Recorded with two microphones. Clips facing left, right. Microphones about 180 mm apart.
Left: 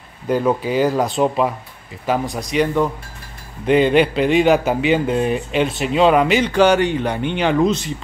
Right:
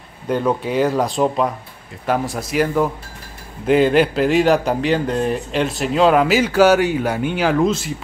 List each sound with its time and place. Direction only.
0.3 s speech: 5° left (ahead or behind)